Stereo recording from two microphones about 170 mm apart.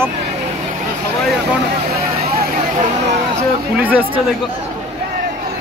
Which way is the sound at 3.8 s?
10° right (ahead or behind).